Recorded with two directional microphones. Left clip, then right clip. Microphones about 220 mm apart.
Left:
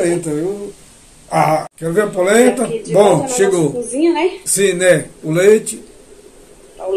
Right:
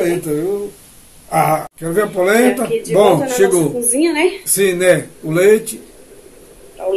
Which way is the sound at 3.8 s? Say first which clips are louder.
Even; 30° right (ahead or behind).